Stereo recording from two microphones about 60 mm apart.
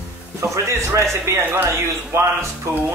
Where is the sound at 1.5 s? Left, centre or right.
Right.